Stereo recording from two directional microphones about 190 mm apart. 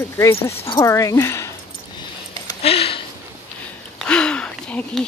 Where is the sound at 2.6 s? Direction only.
30° left (ahead or behind).